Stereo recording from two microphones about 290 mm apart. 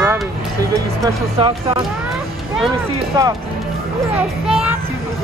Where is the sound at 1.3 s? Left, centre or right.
Centre.